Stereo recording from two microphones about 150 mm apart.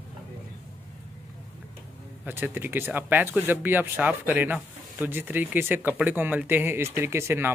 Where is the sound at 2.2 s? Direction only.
15° right (ahead or behind).